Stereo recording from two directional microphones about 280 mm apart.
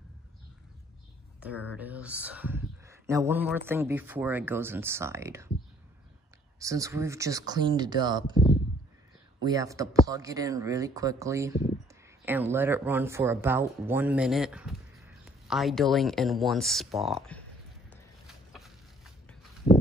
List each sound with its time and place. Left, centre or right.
1.4 s speech: centre
6.6 s speech: centre
9.4 s speech: centre
17.8 s a sound: centre